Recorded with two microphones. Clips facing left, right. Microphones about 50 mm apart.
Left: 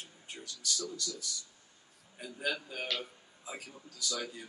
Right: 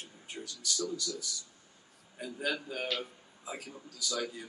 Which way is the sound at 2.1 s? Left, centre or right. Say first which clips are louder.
Right 1 dB; centre.